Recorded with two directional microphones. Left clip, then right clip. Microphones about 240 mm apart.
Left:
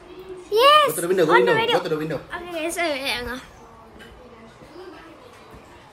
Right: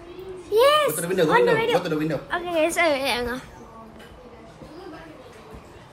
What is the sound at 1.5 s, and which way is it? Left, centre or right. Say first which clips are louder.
Speech: left 1 dB; centre.